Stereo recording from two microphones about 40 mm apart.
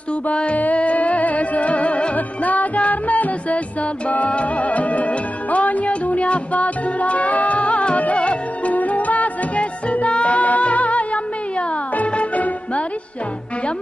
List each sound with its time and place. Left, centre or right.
0.3 s music: left